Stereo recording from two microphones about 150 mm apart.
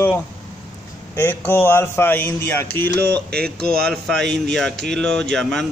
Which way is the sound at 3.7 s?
5° left (ahead or behind).